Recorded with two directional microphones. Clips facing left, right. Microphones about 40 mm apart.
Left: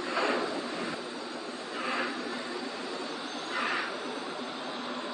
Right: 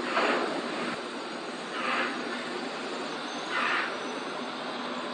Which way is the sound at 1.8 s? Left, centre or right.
Right.